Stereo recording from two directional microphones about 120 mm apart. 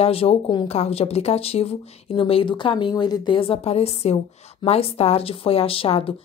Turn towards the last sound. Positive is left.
turn(degrees=55)  # may be behind; listen again after turning